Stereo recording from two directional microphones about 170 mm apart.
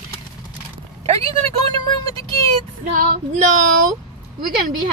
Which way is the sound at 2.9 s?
50° right (ahead or behind).